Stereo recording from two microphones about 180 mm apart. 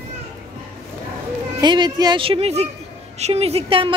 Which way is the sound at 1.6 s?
25° right (ahead or behind).